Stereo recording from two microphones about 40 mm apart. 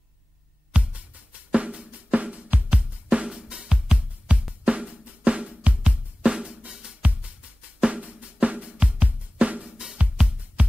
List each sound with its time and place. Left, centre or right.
0.7 s music: right
1.5 s drum: right
4.6 s drum: right
7.0 s music: right
7.8 s drum: right
9.6 s drum: centre
9.9 s music: right